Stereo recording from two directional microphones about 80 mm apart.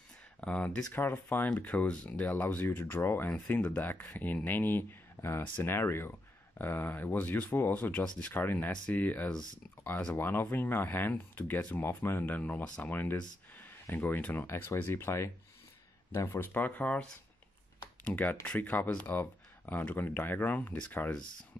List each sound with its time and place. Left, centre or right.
0.4 s speech: centre
0.9 s speech: left